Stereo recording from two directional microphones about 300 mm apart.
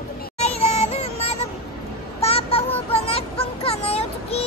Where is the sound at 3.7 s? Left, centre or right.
Centre.